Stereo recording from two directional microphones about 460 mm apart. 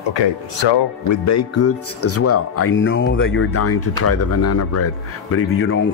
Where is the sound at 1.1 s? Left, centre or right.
Left.